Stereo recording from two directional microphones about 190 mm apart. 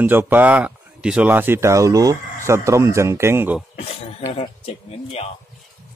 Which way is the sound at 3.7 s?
35° left (ahead or behind).